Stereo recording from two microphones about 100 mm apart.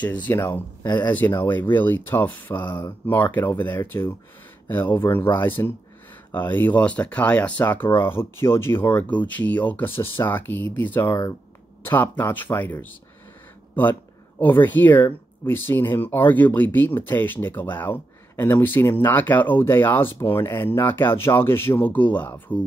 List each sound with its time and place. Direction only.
0.0 s speech: 15° left (ahead or behind)
14.4 s speech: 20° left (ahead or behind)